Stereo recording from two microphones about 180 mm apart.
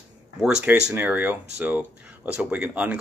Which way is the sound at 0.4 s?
5° right (ahead or behind).